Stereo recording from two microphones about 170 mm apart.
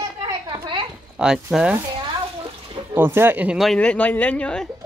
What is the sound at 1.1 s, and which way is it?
Speech, 5° right (ahead or behind).